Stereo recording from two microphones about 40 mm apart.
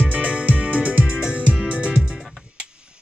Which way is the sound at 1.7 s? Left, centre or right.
Right.